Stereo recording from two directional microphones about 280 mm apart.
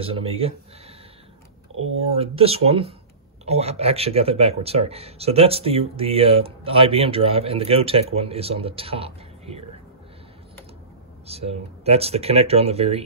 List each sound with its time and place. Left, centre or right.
0.0 s speech: centre
2.0 s speech: centre
11.2 s speech: right